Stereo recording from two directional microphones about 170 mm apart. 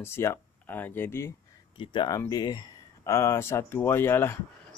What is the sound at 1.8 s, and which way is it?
Speech, 30° left (ahead or behind).